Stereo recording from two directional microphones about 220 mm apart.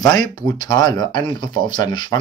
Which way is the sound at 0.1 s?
20° left (ahead or behind).